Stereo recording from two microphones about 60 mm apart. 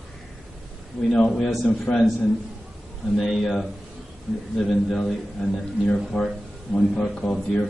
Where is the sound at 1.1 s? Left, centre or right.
Centre.